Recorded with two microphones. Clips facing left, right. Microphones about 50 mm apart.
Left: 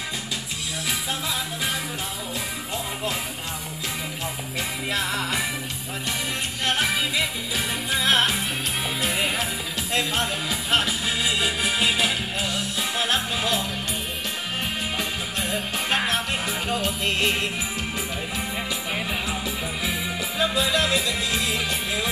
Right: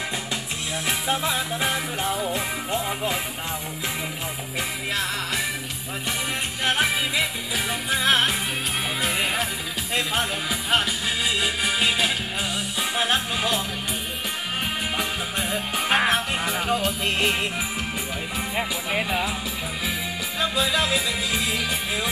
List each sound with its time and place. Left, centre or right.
0.8 s music: right
4.9 s music: centre
6.6 s music: centre
15.0 s music: centre
18.6 s music: right
19.0 s music: centre